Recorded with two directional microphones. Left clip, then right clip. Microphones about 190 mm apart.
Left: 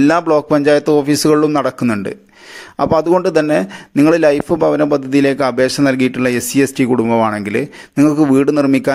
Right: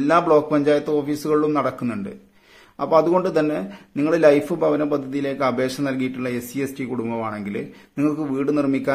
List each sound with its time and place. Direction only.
0.0 s a man's voice: 45° left (ahead or behind)